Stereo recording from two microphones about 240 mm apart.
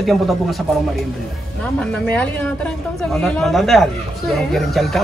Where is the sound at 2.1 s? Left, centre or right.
Centre.